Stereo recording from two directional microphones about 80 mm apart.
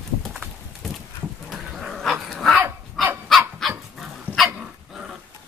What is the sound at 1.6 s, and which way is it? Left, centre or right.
Dog, centre.